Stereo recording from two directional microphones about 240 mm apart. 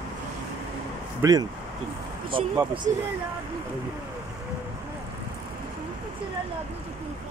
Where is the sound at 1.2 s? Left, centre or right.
Centre.